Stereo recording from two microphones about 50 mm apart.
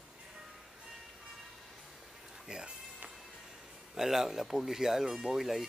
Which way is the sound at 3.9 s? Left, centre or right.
Centre.